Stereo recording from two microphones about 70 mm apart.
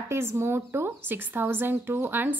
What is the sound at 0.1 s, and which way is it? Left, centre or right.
A woman's voice, right.